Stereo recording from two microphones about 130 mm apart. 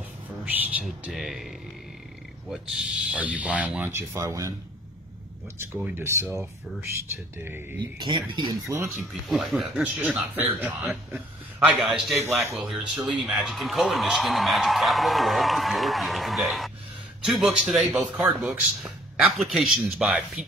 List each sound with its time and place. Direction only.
0.5 s a sound: 10° right (ahead or behind)
0.8 s speech: centre (ahead or behind)
2.5 s speech: 10° right (ahead or behind); by 4.6 s 25° right (ahead or behind)
5.8 s speech: 15° right (ahead or behind)
8.9 s speech: centre (ahead or behind)
9.9 s speech: 10° right (ahead or behind)